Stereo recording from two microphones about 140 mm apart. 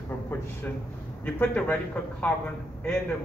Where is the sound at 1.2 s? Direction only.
10° left (ahead or behind).